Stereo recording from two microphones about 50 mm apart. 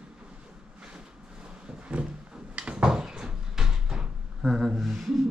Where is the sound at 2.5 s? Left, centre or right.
Right.